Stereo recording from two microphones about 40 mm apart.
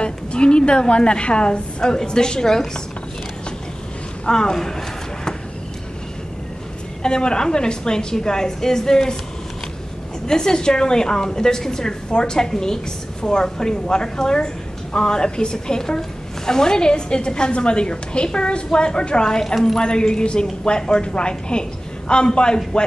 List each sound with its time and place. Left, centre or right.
0.0 s a woman's voice: left
4.3 s speech: centre
7.0 s a woman's voice: left
10.2 s a woman's voice: centre